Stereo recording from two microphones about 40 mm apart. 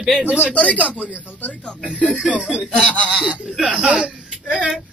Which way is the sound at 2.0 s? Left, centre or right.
Right.